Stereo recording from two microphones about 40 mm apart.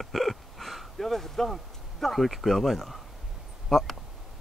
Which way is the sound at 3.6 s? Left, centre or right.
Centre.